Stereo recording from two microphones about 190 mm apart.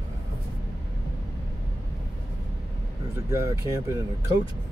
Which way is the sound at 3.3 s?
15° right (ahead or behind).